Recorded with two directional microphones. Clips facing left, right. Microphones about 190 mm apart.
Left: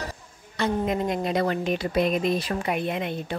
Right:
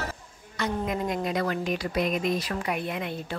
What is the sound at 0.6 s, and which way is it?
A woman's voice, 25° left (ahead or behind).